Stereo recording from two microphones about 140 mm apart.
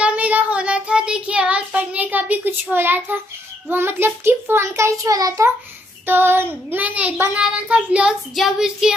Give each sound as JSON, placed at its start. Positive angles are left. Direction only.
{"t": 0.0, "sound": "child singing", "side_deg": -10}
{"t": 3.7, "sound": "a child's voice", "side_deg": -15}
{"t": 6.0, "sound": "child singing", "side_deg": -15}